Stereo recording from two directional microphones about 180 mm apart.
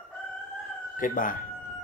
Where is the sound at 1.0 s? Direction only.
50° left (ahead or behind).